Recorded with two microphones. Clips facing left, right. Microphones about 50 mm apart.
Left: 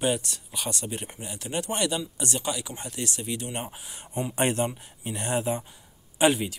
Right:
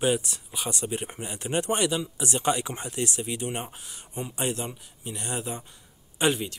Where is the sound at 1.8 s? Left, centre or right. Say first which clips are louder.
Right 1 dB; centre.